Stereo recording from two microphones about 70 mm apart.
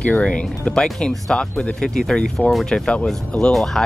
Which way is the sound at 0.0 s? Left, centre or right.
Centre.